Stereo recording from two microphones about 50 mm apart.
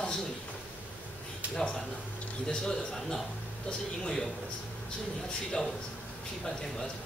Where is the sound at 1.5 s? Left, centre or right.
Centre.